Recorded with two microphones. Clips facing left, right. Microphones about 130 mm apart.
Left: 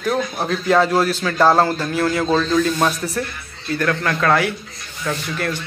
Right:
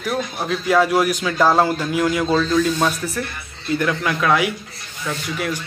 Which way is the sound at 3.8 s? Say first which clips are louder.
Left 2 dB; 10° right (ahead or behind).